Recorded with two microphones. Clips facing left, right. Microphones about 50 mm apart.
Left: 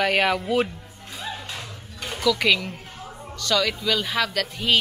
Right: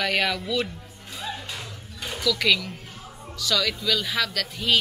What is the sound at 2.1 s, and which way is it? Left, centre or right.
Speech, centre.